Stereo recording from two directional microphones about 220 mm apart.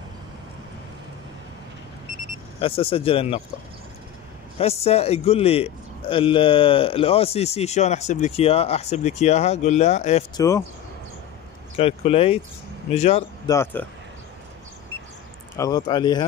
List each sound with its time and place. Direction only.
2.6 s a man's voice: 25° left (ahead or behind)
4.6 s a man's voice: 30° left (ahead or behind)
10.3 s speech: 15° left (ahead or behind)
11.7 s a man's voice: 25° left (ahead or behind)
13.5 s speech: 10° left (ahead or behind)
15.5 s a man's voice: 15° left (ahead or behind)